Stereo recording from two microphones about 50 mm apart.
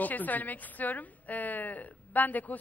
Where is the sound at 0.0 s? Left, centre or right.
Left.